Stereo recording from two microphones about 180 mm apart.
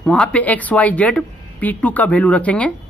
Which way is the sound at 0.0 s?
5° left (ahead or behind).